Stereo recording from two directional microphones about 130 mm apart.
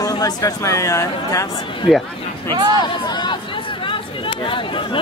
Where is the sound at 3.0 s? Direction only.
35° left (ahead or behind).